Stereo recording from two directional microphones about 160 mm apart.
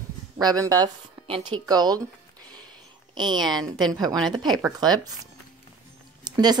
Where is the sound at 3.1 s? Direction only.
25° right (ahead or behind).